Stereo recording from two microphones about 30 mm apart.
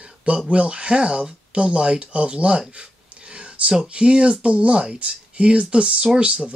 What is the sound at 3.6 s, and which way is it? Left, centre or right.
Speech, right.